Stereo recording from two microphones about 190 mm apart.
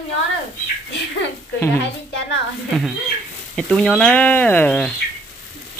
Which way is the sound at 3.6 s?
Centre (ahead or behind).